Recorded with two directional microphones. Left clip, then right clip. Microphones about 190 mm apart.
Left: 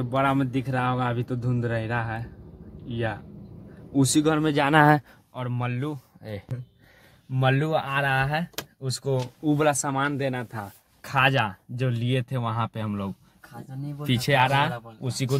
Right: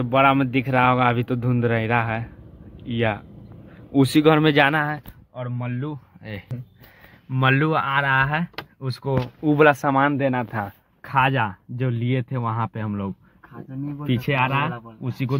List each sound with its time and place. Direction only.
0.0 s speech: 5° right (ahead or behind)
5.8 s speech: 20° left (ahead or behind)
7.3 s speech: 5° left (ahead or behind)
9.4 s speech: 15° right (ahead or behind)
11.0 s speech: 5° left (ahead or behind)
14.0 s speech: 30° left (ahead or behind)